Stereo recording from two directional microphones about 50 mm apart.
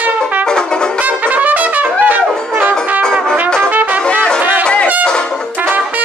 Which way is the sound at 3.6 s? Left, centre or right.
Right.